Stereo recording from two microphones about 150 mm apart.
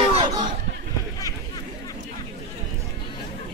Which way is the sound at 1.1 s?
25° left (ahead or behind).